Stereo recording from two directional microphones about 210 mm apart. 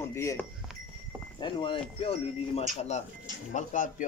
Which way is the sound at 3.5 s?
35° left (ahead or behind).